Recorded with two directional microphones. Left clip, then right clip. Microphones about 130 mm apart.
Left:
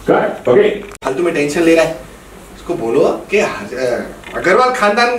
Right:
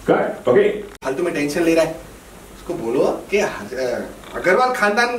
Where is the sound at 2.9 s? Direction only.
10° right (ahead or behind).